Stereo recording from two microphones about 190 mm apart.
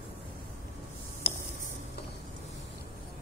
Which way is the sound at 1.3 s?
55° left (ahead or behind).